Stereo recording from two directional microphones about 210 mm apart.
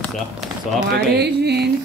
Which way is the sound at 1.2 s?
50° right (ahead or behind).